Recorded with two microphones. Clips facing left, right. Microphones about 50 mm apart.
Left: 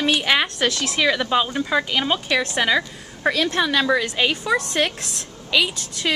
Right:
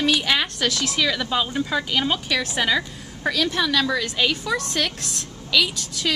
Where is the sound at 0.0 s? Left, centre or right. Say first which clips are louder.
Left 2 dB; centre.